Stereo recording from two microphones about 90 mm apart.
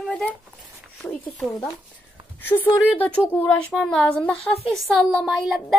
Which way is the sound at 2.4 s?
20° left (ahead or behind).